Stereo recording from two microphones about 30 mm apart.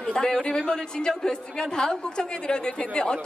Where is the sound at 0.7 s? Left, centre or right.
Left.